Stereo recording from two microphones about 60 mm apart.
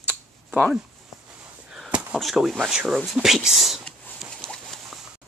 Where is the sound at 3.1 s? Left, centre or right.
Centre.